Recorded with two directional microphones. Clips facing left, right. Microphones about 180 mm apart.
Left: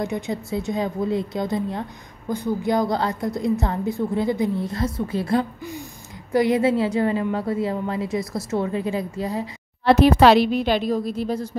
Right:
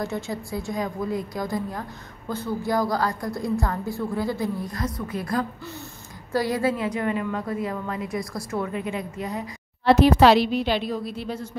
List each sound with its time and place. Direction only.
0.0 s a woman's voice: 20° left (ahead or behind)
9.8 s a woman's voice: 60° left (ahead or behind); by 11.4 s 40° left (ahead or behind)